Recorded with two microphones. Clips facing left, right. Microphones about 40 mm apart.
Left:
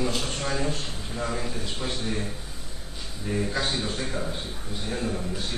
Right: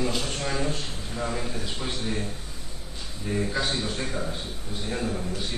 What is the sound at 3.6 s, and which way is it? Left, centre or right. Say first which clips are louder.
A man's voice: even; centre.